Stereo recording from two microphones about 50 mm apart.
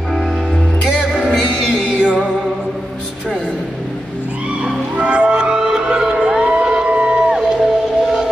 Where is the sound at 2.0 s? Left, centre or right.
Centre.